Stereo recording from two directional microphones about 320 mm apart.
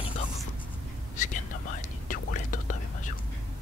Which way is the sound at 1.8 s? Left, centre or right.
Left.